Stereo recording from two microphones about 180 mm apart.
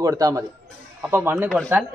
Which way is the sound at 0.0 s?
20° right (ahead or behind).